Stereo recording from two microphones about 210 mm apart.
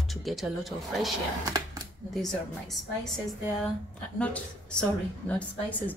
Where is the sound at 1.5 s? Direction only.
15° right (ahead or behind).